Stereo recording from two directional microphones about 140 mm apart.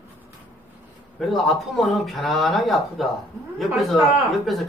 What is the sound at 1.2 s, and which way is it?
Speech, centre (ahead or behind).